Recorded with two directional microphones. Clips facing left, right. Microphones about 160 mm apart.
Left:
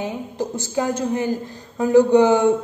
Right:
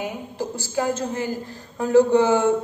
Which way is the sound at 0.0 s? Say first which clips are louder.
Left 3 dB; 20° left (ahead or behind).